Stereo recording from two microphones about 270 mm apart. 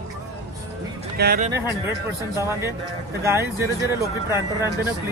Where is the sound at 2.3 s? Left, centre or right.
Centre.